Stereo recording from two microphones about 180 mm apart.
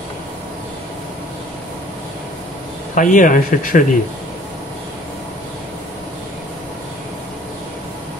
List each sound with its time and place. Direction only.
2.9 s speech: 45° left (ahead or behind)